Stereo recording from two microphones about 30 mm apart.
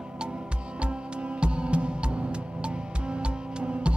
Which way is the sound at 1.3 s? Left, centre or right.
Right.